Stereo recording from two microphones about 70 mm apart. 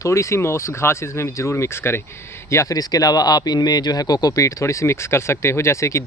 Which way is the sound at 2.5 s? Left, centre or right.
Left.